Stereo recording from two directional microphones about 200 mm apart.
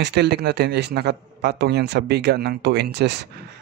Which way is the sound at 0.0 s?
55° right (ahead or behind).